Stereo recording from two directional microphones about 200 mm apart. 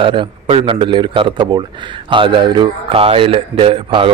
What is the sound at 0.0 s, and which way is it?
Speech, 25° right (ahead or behind).